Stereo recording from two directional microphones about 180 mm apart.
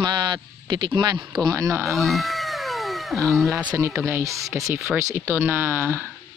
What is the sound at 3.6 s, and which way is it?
Speech, 15° right (ahead or behind).